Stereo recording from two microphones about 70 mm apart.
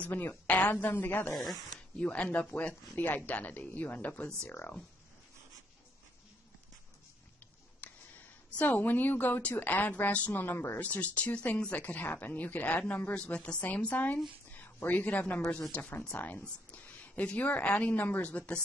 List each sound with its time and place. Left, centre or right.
0.0 s speech: left
1.3 s speech: centre
1.8 s speech: centre
7.8 s a sound: centre
8.5 s speech: left
10.8 s a woman's voice: left